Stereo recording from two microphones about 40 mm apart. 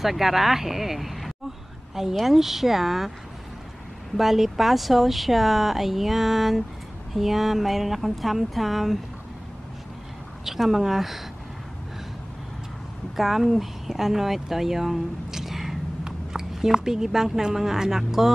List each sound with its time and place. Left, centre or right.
0.0 s speech: centre
4.2 s speech: centre
10.4 s speech: centre
13.1 s a woman's voice: centre